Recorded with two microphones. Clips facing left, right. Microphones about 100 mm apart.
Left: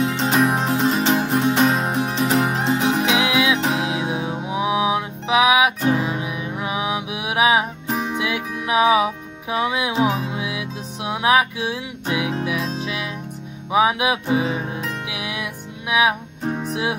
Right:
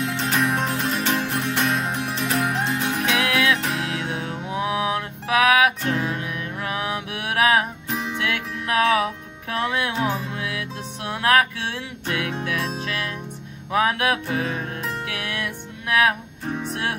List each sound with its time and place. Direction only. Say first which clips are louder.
0.0 s music: left 5 dB; 30° left (ahead or behind)
3.2 s music: left 2 dB; 10° left (ahead or behind)
3.6 s music: left 5 dB; 25° left (ahead or behind)
3.9 s music: left 4 dB; 10° left (ahead or behind)